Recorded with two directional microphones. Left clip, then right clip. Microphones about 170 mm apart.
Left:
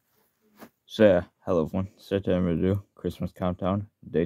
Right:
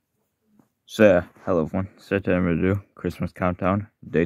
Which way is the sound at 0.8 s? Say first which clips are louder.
Right 3 dB; 15° right (ahead or behind).